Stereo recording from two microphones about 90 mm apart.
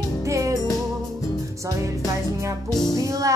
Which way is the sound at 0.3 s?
35° right (ahead or behind).